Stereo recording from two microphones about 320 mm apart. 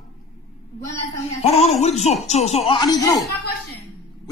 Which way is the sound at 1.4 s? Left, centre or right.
Centre.